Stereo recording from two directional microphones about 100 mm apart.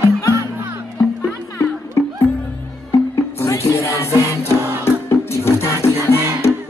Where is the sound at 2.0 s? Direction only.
30° left (ahead or behind).